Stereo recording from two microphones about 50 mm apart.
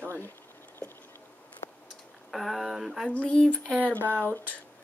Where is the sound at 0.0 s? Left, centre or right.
Left.